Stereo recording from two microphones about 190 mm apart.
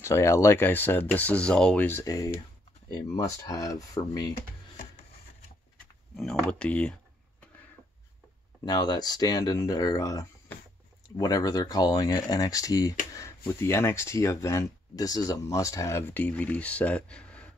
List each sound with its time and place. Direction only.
0.0 s speech: 15° left (ahead or behind)
4.3 s a sound: 35° left (ahead or behind)
6.1 s speech: 5° left (ahead or behind)
8.6 s speech: 20° left (ahead or behind)
10.5 s a sound: 5° left (ahead or behind)
11.1 s speech: 20° left (ahead or behind)